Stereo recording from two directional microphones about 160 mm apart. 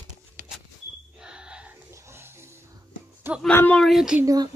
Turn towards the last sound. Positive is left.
turn(degrees=-25)  # may be behind; listen again after turning